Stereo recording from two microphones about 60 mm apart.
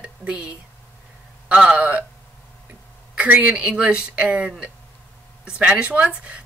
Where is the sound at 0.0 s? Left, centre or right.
Right.